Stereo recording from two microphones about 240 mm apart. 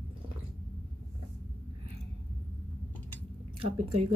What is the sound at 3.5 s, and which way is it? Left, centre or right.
Speech, right.